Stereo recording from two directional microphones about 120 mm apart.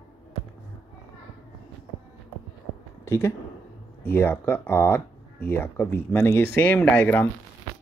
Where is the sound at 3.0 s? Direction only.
20° left (ahead or behind).